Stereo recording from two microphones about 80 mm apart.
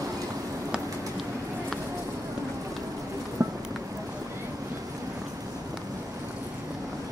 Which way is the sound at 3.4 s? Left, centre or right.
Right.